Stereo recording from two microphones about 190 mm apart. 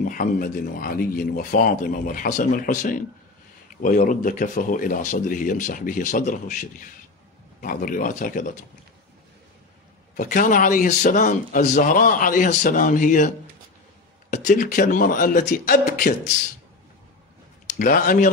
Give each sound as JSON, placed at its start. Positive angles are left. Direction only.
{"t": 0.0, "sound": "a man's voice", "side_deg": 45}
{"t": 10.1, "sound": "a man's voice", "side_deg": 45}
{"t": 14.3, "sound": "a man's voice", "side_deg": 45}
{"t": 17.6, "sound": "speech", "side_deg": 45}